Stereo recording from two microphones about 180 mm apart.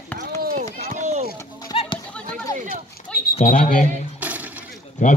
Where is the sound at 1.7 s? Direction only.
30° left (ahead or behind).